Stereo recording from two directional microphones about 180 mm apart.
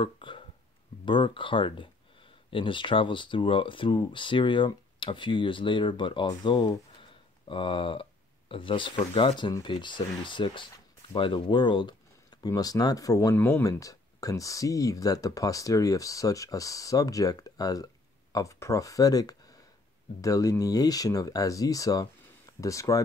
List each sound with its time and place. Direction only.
0.0 s hiccup: 30° left (ahead or behind)
1.0 s speech: 25° left (ahead or behind)